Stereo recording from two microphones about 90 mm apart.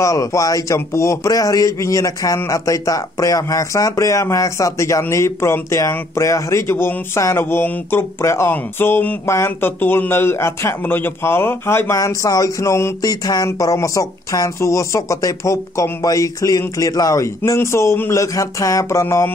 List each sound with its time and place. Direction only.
0.0 s a man's voice: 35° left (ahead or behind)